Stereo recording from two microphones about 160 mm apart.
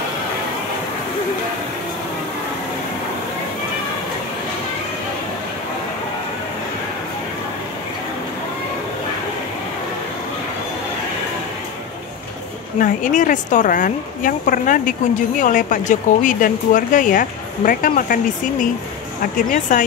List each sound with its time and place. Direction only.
12.7 s a woman's voice: 55° left (ahead or behind)